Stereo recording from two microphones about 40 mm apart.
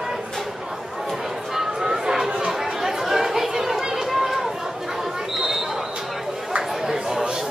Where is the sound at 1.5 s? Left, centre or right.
Centre.